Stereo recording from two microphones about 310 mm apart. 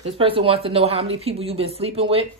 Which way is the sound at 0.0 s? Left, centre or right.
Centre.